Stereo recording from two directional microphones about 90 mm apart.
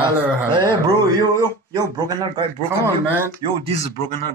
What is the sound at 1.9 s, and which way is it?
Speech, 45° right (ahead or behind).